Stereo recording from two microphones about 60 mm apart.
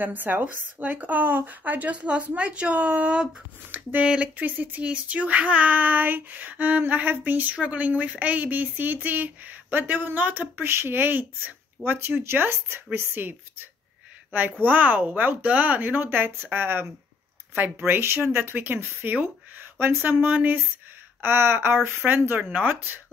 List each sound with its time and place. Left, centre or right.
0.0 s a woman's voice: right
4.4 s a woman's voice: right
10.6 s speech: right
14.6 s a woman's voice: right